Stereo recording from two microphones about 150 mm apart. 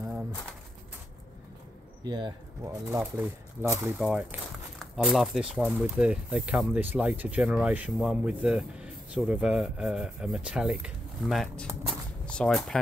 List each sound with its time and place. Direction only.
2.0 s speech: 30° right (ahead or behind); by 12.7 s 5° left (ahead or behind)